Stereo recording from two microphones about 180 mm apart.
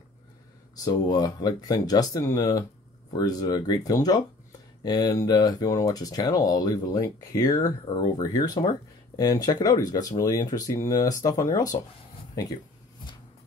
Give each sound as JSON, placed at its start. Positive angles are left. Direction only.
{"t": 0.7, "sound": "speech", "side_deg": 20}